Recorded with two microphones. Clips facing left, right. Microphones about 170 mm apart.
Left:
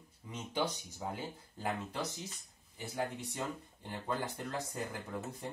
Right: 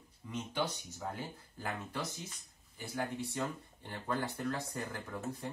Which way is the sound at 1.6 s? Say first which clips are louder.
Left 2 dB; 25° left (ahead or behind).